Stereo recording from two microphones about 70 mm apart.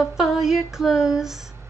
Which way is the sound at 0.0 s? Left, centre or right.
Centre.